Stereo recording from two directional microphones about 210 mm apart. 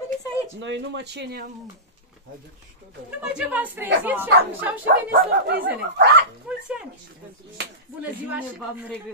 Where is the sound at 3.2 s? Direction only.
5° right (ahead or behind).